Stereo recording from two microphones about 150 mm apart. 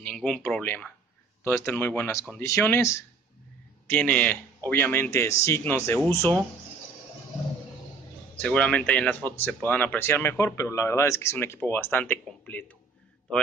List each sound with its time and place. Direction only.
0.0 s speech: 5° left (ahead or behind)
8.4 s speech: 5° left (ahead or behind)